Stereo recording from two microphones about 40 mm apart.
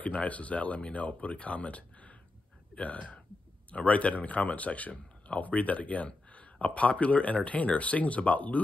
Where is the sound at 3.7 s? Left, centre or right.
Left.